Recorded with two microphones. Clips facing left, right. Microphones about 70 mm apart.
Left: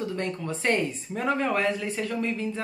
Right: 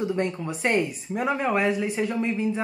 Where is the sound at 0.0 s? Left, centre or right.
Centre.